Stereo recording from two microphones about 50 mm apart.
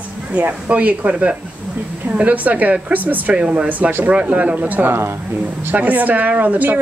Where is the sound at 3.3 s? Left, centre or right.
Right.